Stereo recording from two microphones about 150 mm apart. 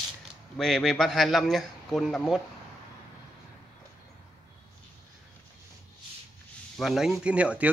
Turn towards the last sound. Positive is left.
turn(degrees=-10)  # may be behind; listen again after turning